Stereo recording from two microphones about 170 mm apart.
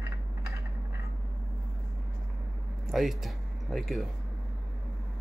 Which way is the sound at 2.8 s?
Centre (ahead or behind).